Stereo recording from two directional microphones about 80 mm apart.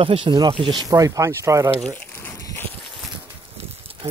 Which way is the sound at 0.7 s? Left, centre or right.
Right.